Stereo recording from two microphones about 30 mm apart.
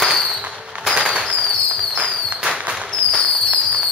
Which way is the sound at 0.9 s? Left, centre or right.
Right.